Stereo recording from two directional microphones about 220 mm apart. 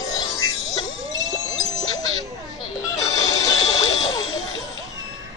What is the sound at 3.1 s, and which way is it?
Music, 15° left (ahead or behind).